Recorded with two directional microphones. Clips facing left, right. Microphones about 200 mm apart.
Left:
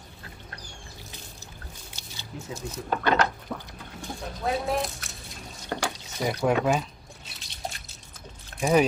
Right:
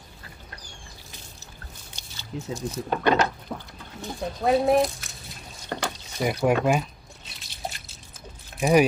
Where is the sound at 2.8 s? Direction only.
15° right (ahead or behind).